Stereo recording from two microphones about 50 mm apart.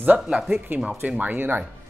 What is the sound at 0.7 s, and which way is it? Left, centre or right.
Speech, right.